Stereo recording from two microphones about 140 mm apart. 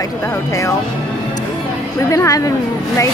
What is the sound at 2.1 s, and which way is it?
Speech, 25° left (ahead or behind).